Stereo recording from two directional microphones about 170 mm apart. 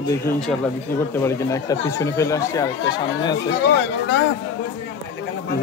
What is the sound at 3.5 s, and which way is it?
Speech, 90° left.